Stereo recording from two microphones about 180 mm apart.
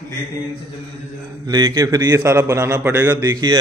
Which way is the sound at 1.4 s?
20° right (ahead or behind).